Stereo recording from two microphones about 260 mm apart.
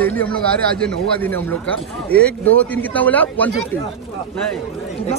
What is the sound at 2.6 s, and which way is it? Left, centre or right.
A man's voice, centre.